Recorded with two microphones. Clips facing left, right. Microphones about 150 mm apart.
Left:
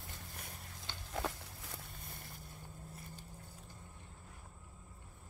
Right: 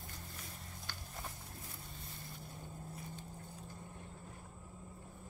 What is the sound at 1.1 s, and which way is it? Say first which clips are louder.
Walk: left 12 dB; 90° left.